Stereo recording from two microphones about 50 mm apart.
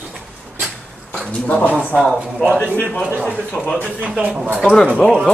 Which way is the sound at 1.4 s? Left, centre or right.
Left.